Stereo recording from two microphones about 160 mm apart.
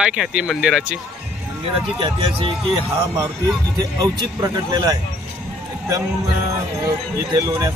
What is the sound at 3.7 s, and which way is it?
Speech, 20° right (ahead or behind).